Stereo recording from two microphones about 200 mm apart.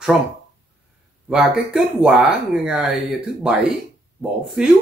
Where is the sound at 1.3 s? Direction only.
Centre (ahead or behind).